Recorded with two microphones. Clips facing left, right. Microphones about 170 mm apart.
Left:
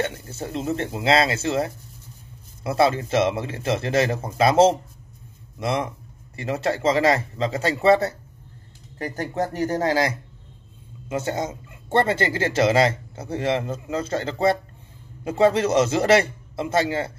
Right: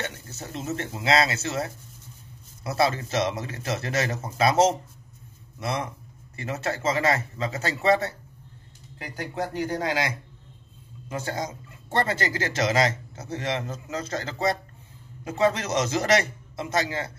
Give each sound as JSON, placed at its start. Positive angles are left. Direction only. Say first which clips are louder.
{"t": 0.0, "sound": "speech", "louder": "left 7 dB", "side_deg": 30}
{"t": 8.9, "sound": "speech", "louder": "left 6 dB", "side_deg": 45}
{"t": 11.1, "sound": "speech", "louder": "left 5 dB", "side_deg": 25}